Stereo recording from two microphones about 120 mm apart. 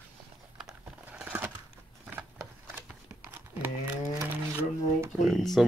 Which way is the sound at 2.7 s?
15° right (ahead or behind).